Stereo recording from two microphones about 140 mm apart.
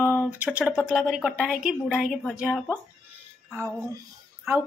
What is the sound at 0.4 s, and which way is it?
A woman's voice, 10° right (ahead or behind).